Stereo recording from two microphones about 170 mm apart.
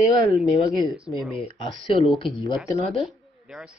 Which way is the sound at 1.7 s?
30° left (ahead or behind).